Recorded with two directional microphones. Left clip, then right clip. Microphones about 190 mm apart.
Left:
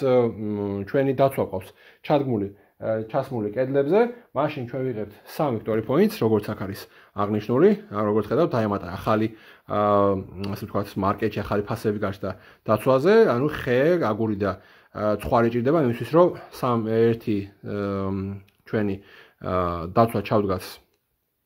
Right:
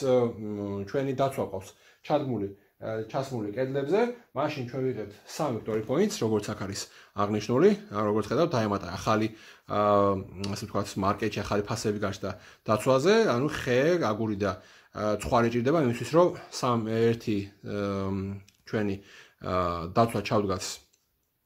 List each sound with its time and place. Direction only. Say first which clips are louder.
0.0 s speech: left 5 dB; 45° left (ahead or behind); by 20.8 s 20° left (ahead or behind)